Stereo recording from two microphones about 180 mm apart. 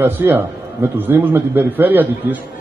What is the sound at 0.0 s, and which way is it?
A man's voice, 10° right (ahead or behind).